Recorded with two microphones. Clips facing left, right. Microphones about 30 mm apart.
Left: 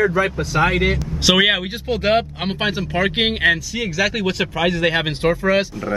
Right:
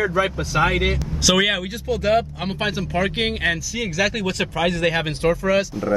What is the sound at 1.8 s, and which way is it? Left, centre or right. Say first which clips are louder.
Speech: left 1 dB; left.